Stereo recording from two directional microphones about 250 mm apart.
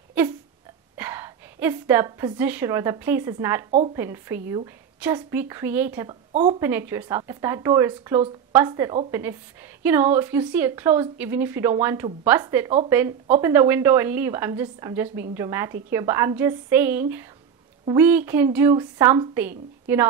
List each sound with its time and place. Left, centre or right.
0.9 s a woman's voice: centre
6.3 s speech: right
6.6 s a woman's voice: centre